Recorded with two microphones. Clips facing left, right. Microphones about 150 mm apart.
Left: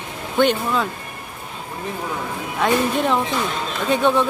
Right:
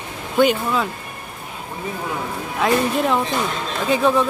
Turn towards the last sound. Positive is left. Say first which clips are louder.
# even
turn(degrees=0)  # may be behind; listen again after turning